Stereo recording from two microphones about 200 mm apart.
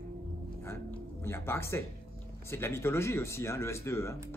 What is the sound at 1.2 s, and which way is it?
Speech, 10° left (ahead or behind).